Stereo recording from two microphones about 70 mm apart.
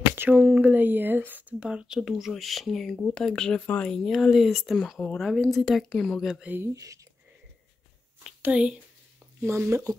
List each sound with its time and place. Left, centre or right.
0.1 s speech: right
1.6 s speech: centre
3.9 s speech: centre
6.7 s speech: right
8.4 s speech: centre
9.4 s speech: right